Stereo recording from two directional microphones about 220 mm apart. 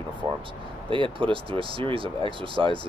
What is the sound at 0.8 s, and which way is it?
Speech, 25° right (ahead or behind).